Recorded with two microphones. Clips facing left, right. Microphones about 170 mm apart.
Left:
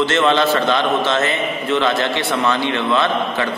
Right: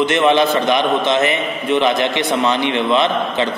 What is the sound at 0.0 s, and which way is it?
A man's voice, 15° right (ahead or behind).